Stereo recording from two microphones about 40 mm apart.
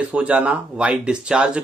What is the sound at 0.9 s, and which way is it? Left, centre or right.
Speech, right.